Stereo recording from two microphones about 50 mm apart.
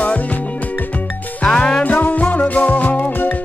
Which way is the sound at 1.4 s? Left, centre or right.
Centre.